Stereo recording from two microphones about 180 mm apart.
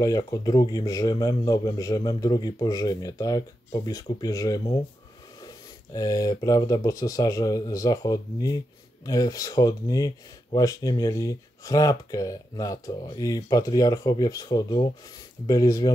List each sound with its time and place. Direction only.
0.0 s speech: 20° left (ahead or behind)
5.9 s speech: 20° left (ahead or behind)